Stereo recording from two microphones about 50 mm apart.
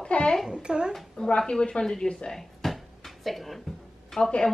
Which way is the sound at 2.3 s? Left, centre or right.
Centre.